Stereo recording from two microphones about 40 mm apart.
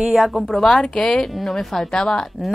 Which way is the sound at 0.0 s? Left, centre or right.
Centre.